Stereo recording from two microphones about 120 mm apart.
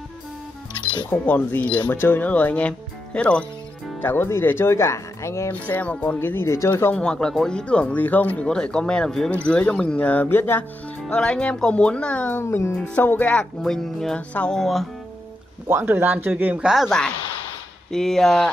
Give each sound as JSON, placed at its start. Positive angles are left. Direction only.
{"t": 1.1, "sound": "speech", "side_deg": 15}
{"t": 5.7, "sound": "speech", "side_deg": 15}
{"t": 6.8, "sound": "speech", "side_deg": 10}
{"t": 12.7, "sound": "speech", "side_deg": 10}
{"t": 15.7, "sound": "speech", "side_deg": -20}